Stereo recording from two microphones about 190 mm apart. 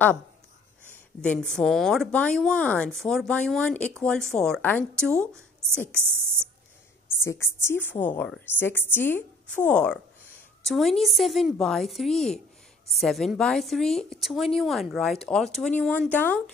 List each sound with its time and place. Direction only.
1.2 s a woman's voice: 5° left (ahead or behind)
7.2 s a woman's voice: 15° left (ahead or behind)